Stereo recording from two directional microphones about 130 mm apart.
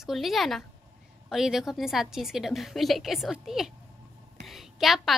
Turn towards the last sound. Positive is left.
turn(degrees=0)  # may be behind; listen again after turning